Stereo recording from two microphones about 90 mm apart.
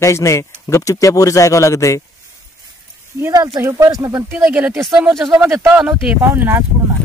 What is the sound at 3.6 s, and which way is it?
Speech, 40° right (ahead or behind).